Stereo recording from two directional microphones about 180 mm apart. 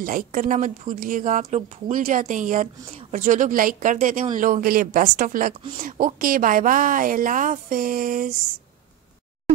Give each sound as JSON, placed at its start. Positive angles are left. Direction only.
{"t": 0.0, "sound": "a woman's voice", "side_deg": -50}